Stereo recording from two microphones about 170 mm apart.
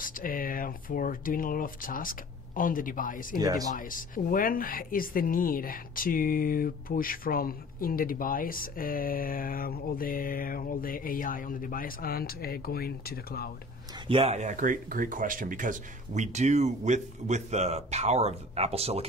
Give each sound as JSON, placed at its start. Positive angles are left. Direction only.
{"t": 0.0, "sound": "speech", "side_deg": 55}
{"t": 3.3, "sound": "speech", "side_deg": -20}
{"t": 3.7, "sound": "speech", "side_deg": 55}
{"t": 14.0, "sound": "speech", "side_deg": -35}